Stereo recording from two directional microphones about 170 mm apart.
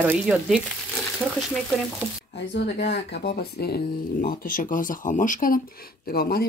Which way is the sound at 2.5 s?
90° left.